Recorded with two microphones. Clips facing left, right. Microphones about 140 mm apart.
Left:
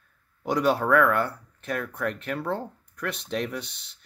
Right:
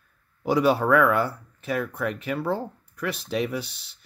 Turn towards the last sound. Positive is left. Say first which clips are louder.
# right 4 dB
turn(degrees=-5)  # may be behind; listen again after turning